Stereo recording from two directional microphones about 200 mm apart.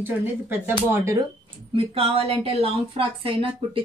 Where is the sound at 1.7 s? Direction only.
30° right (ahead or behind).